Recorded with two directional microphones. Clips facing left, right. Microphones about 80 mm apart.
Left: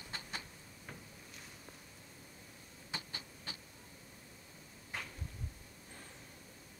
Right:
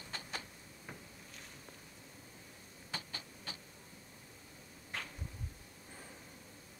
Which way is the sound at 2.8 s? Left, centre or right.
Left.